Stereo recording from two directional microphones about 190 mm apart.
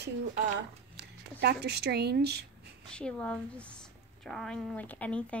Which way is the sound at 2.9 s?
5° left (ahead or behind).